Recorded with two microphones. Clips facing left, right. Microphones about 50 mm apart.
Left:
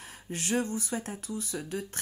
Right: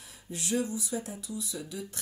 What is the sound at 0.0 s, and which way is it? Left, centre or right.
Speech, left.